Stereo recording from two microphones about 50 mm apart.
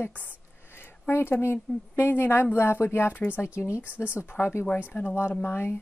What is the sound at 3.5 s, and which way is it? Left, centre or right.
Speech, left.